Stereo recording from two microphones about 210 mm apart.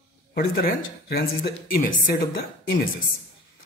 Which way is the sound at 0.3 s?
50° left (ahead or behind).